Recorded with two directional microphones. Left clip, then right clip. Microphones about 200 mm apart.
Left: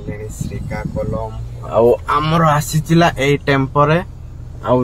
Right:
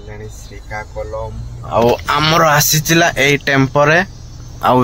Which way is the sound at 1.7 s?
10° left (ahead or behind).